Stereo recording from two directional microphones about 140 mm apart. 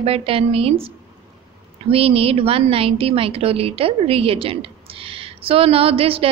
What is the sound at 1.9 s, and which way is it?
A woman's voice, 45° right (ahead or behind).